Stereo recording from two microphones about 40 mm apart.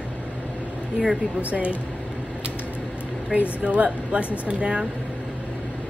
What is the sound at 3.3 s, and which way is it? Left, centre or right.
A woman's voice, right.